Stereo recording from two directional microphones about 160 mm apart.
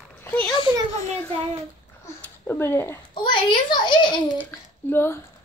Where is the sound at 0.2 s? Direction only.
10° left (ahead or behind).